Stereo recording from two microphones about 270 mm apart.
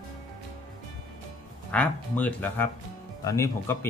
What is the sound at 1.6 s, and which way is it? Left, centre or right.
Speech, centre.